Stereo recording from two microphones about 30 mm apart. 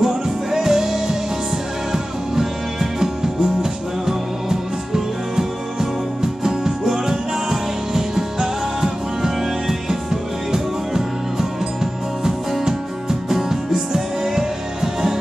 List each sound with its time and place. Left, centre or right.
0.0 s music: centre